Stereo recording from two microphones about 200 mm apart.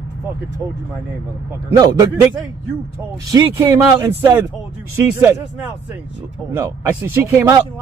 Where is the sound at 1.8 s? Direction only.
20° right (ahead or behind).